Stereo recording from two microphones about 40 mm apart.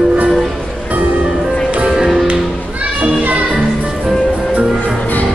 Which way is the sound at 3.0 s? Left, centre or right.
Right.